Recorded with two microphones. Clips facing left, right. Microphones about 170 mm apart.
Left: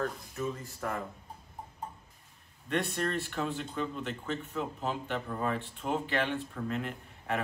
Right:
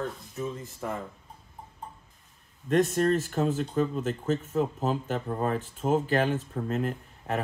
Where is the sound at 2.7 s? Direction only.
40° right (ahead or behind).